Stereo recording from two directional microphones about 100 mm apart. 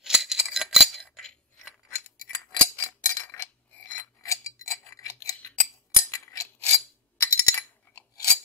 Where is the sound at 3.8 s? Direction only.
35° left (ahead or behind).